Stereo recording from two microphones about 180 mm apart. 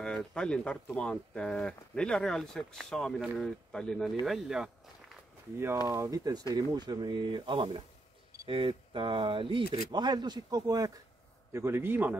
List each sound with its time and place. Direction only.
0.0 s speech: 5° left (ahead or behind)
5.9 s a man's voice: 20° right (ahead or behind)